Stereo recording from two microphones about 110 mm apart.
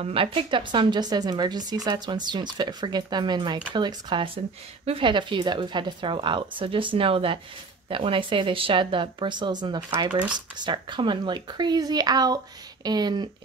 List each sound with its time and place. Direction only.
0.0 s speech: 55° right (ahead or behind); by 13.3 s 40° right (ahead or behind)